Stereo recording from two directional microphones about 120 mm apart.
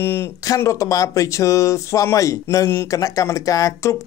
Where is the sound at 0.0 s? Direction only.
20° left (ahead or behind).